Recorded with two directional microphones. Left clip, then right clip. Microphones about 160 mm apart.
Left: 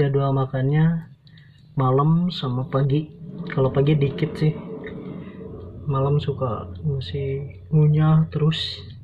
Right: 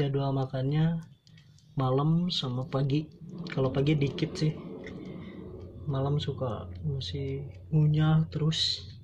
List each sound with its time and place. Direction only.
0.0 s speech: 10° right (ahead or behind)
5.9 s speech: 15° right (ahead or behind)